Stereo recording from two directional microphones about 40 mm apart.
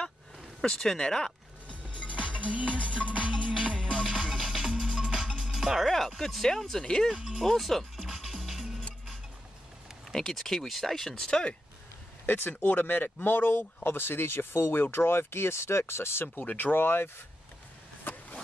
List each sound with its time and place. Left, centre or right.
0.6 s speech: centre
1.8 s music: right
4.0 s music: centre
5.9 s speech: centre
7.2 s speech: centre
7.4 s speech: centre
10.1 s speech: centre
12.6 s speech: left
16.4 s speech: left
16.7 s speech: left
18.1 s a sound: left